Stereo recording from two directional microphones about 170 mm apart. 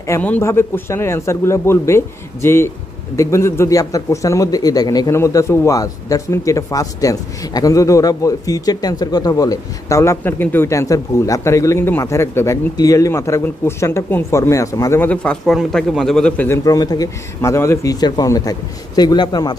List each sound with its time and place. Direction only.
0.0 s a man's voice: 15° left (ahead or behind)